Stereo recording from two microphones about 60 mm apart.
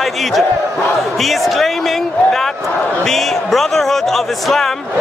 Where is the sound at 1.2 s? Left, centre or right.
Centre.